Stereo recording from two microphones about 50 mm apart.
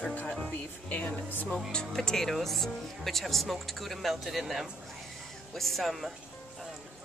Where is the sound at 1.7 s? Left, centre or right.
Centre.